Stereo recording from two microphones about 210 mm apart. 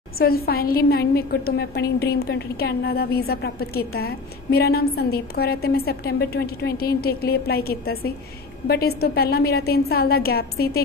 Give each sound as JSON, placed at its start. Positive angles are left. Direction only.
{"t": 0.2, "sound": "a woman's voice", "side_deg": 45}